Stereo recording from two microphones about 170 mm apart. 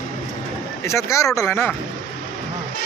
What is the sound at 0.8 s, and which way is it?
Speech, 15° left (ahead or behind).